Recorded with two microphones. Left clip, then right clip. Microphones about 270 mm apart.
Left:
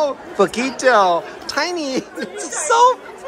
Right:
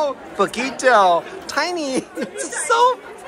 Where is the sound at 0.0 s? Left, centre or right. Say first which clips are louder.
Left 3 dB; centre.